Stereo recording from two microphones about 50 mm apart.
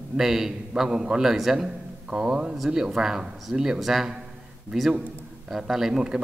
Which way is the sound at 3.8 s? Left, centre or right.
Centre.